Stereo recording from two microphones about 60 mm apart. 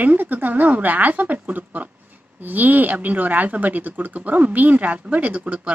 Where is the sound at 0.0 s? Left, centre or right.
Right.